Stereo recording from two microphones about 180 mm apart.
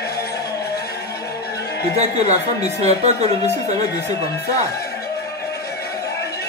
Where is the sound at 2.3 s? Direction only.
40° right (ahead or behind).